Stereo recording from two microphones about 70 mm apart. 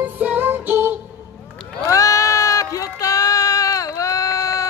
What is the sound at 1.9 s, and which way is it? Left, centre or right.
Sheep, left.